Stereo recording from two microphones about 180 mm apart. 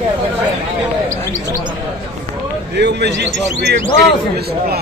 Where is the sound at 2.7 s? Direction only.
70° right (ahead or behind).